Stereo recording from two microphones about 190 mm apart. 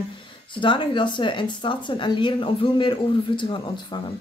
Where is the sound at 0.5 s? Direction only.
25° left (ahead or behind).